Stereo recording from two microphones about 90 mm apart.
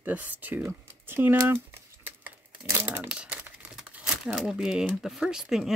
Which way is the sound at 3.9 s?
15° right (ahead or behind).